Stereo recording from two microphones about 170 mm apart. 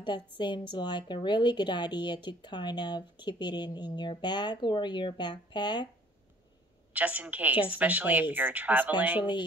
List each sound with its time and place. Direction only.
0.4 s a woman's voice: 25° left (ahead or behind)
6.9 s speech: 10° right (ahead or behind)